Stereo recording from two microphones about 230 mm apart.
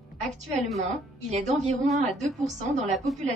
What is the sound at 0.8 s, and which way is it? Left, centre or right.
Speech, right.